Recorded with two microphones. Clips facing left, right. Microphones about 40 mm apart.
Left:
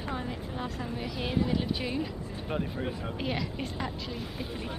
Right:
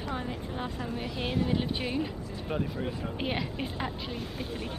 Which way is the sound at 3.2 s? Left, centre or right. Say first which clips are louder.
Even; right.